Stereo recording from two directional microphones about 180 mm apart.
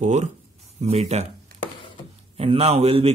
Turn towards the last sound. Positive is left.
turn(degrees=-35)  # may be behind; listen again after turning